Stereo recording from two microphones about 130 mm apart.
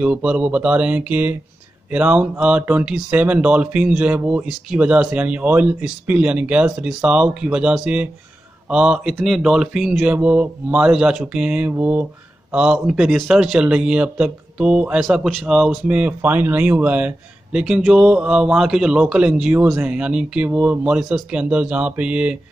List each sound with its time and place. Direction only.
0.0 s a man's voice: 10° right (ahead or behind)